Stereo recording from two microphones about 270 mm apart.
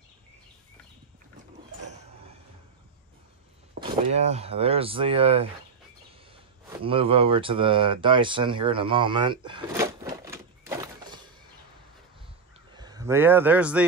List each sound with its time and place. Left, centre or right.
3.8 s speech: right
12.7 s speech: centre